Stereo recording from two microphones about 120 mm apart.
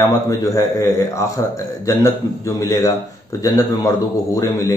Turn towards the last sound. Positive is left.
turn(degrees=25)  # may be behind; listen again after turning